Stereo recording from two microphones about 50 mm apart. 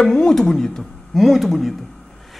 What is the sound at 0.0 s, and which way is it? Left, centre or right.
Speech, centre.